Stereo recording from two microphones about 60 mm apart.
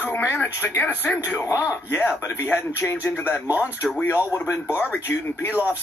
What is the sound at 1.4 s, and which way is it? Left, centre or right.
Speech, left.